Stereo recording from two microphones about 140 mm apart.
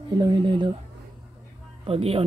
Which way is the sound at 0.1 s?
30° right (ahead or behind).